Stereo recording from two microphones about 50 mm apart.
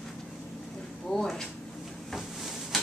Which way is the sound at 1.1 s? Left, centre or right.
Centre.